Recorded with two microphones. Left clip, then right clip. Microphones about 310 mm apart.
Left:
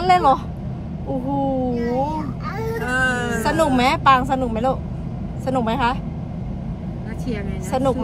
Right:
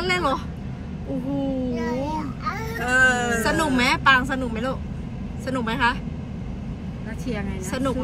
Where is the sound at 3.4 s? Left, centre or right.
Left.